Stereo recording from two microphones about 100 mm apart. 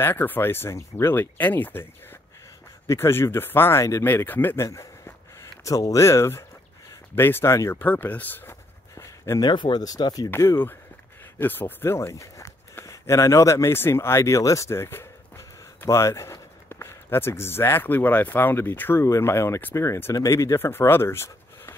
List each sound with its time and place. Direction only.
0.0 s speech: 20° left (ahead or behind)
2.9 s speech: 25° left (ahead or behind)
8.9 s a sound: 30° left (ahead or behind)
9.4 s speech: 50° left (ahead or behind)
10.3 s speech: 25° left (ahead or behind)